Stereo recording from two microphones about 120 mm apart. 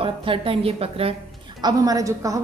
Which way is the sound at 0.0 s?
50° right (ahead or behind).